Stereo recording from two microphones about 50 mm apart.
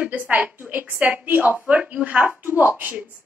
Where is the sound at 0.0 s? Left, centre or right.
Right.